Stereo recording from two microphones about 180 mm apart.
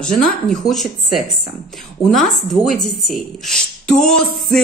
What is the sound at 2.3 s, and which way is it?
A woman's voice, centre (ahead or behind).